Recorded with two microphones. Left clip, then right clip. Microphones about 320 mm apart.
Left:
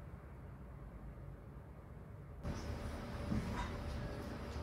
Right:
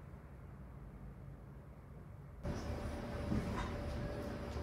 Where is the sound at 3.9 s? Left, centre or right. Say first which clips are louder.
Right 3 dB; centre.